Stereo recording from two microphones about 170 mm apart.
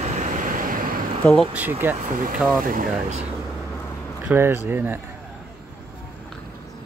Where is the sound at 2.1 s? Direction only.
55° right (ahead or behind).